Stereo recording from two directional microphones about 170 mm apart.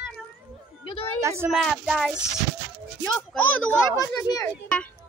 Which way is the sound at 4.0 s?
20° left (ahead or behind).